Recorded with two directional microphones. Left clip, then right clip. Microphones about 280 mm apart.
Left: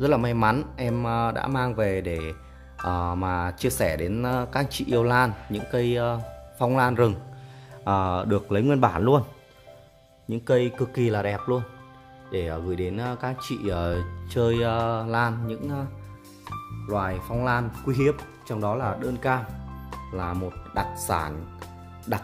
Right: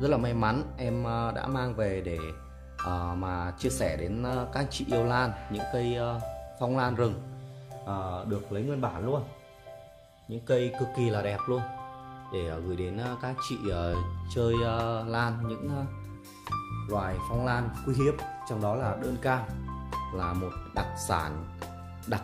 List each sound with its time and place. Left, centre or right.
0.0 s speech: centre; by 9.2 s left
10.3 s speech: centre
16.5 s music: centre
16.8 s speech: centre
20.7 s speech: centre
21.5 s music: centre